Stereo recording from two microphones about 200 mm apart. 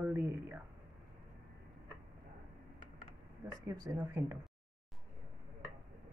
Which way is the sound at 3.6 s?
20° right (ahead or behind).